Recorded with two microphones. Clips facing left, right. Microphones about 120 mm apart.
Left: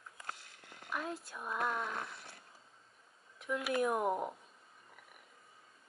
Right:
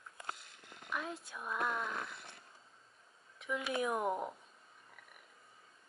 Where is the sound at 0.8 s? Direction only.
Centre (ahead or behind).